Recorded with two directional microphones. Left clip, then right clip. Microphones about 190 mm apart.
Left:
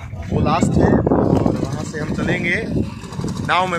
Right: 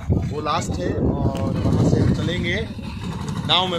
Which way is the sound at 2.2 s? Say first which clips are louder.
Left 5 dB; 20° left (ahead or behind).